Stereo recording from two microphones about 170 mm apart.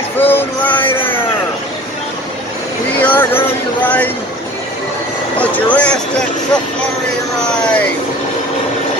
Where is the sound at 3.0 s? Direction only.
10° left (ahead or behind).